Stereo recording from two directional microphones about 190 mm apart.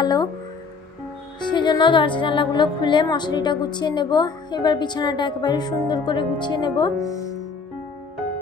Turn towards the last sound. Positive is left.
turn(degrees=25)  # may be behind; listen again after turning